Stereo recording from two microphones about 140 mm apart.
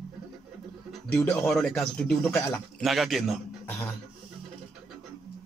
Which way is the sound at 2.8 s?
Centre (ahead or behind).